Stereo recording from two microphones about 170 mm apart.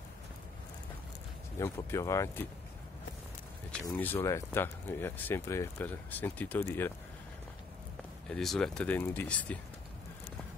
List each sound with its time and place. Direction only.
1.6 s speech: 15° left (ahead or behind)
3.9 s speech: 10° left (ahead or behind)
8.3 s speech: 5° left (ahead or behind)